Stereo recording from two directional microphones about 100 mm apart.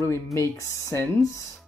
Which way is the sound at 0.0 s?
30° left (ahead or behind).